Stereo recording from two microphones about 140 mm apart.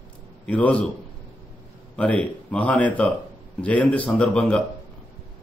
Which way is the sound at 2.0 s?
10° left (ahead or behind).